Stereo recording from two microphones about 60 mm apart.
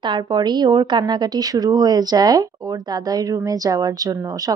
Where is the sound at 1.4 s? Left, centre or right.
Right.